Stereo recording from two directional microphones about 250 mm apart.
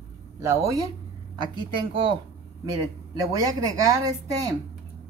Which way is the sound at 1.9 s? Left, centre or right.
Centre.